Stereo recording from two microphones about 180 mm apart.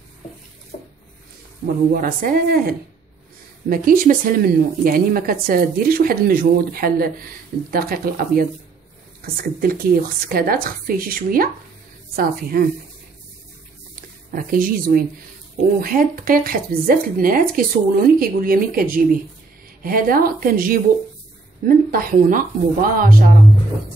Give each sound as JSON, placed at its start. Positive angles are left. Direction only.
{"t": 0.7, "sound": "a sound", "side_deg": 40}
{"t": 2.0, "sound": "a woman's voice", "side_deg": -50}
{"t": 14.3, "sound": "a woman's voice", "side_deg": -50}